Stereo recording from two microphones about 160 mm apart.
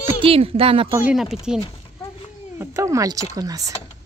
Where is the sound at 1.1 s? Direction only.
Centre (ahead or behind).